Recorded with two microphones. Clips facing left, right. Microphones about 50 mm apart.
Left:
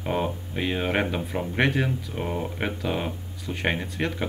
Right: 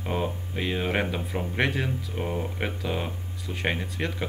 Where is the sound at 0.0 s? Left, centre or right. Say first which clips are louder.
Left 2 dB; centre.